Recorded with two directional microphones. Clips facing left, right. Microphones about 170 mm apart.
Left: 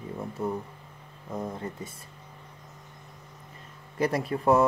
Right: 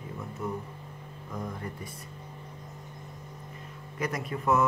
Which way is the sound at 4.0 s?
30° left (ahead or behind).